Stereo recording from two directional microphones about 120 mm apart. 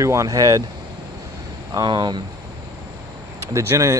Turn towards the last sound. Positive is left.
turn(degrees=-25)  # may be behind; listen again after turning